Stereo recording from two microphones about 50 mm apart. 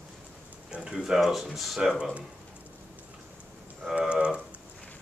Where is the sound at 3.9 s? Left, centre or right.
Right.